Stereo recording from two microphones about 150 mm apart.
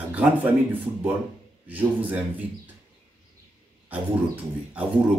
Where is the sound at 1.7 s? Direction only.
10° right (ahead or behind).